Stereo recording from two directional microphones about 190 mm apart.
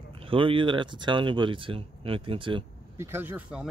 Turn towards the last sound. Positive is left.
turn(degrees=-5)  # may be behind; listen again after turning